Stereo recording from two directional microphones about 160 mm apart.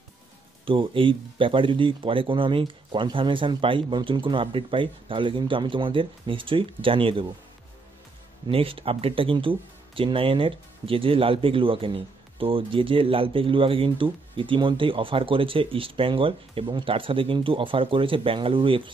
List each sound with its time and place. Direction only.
0.7 s speech: 30° right (ahead or behind)
8.5 s speech: 35° right (ahead or behind)